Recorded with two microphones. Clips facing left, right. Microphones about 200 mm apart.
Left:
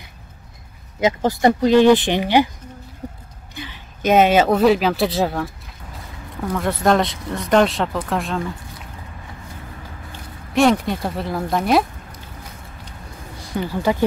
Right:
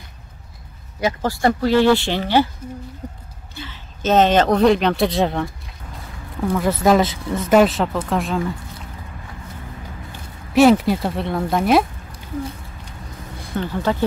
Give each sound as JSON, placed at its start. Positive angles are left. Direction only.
{"t": 1.0, "sound": "speech", "side_deg": 20}
{"t": 3.5, "sound": "speech", "side_deg": 15}
{"t": 10.5, "sound": "speech", "side_deg": -5}
{"t": 13.6, "sound": "speech", "side_deg": 10}